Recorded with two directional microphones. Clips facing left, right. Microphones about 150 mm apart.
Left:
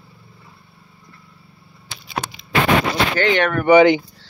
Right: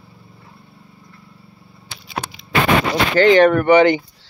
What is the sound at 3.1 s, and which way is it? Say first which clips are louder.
Speech: right 10 dB; 35° right (ahead or behind).